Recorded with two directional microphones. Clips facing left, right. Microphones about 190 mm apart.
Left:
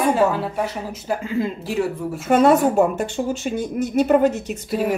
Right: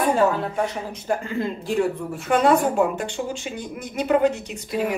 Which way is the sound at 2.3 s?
40° left (ahead or behind).